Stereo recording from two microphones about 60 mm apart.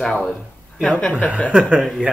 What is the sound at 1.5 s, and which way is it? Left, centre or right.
Speech, centre.